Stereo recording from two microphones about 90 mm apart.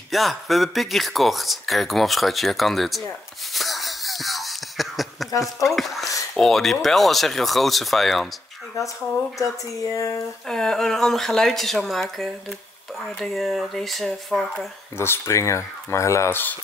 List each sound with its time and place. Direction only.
0.1 s speech: centre (ahead or behind)
3.5 s music: centre (ahead or behind)
5.4 s speech: centre (ahead or behind)
8.8 s speech: 35° left (ahead or behind)
10.4 s speech: 5° left (ahead or behind)
15.0 s speech: 30° left (ahead or behind)